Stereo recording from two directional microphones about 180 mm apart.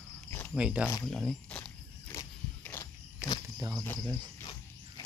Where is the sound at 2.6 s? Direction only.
10° left (ahead or behind).